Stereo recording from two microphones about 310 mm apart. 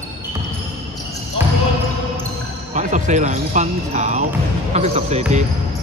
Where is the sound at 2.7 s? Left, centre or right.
Right.